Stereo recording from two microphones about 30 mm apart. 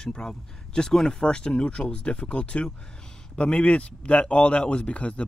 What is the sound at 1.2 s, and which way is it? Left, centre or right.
Speech, left.